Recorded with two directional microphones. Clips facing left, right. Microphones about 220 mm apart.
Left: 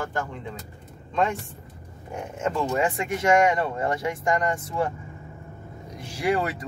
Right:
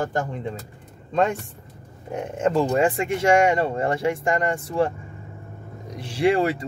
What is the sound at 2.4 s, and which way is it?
Speech, 35° right (ahead or behind).